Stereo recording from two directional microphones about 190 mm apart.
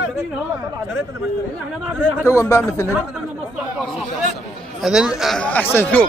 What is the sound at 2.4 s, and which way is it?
Speech, 15° left (ahead or behind).